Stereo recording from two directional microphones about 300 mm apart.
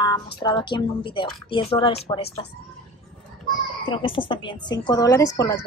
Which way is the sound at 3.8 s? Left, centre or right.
Centre.